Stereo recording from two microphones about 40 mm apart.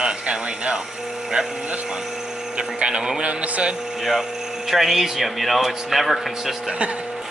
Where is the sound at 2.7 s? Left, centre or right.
Right.